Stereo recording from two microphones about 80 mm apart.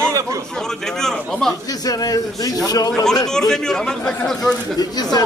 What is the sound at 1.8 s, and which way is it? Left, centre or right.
A man's voice, left.